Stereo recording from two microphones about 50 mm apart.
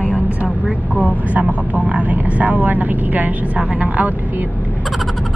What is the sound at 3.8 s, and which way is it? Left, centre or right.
Speech, right.